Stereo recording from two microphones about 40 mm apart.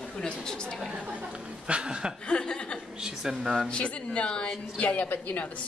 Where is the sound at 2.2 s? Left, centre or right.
Left.